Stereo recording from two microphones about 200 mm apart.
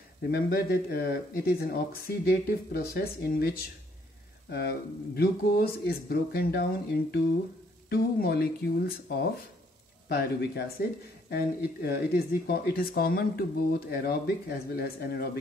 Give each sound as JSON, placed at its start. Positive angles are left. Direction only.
{"t": 0.3, "sound": "speech", "side_deg": 50}